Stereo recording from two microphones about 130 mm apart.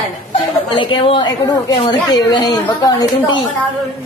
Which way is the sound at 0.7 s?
40° left (ahead or behind).